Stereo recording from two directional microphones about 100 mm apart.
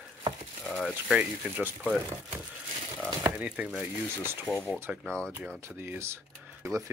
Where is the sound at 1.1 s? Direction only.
20° right (ahead or behind).